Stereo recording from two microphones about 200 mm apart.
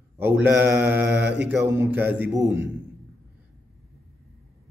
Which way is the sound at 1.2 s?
55° right (ahead or behind).